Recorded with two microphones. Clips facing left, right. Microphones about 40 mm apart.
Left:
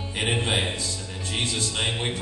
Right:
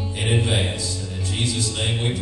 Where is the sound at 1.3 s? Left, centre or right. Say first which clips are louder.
Right 1 dB; left.